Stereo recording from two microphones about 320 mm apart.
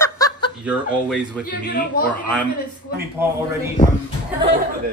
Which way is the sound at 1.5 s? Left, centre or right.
Left.